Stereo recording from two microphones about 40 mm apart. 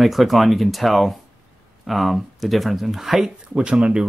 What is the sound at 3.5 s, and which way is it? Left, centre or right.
Speech, right.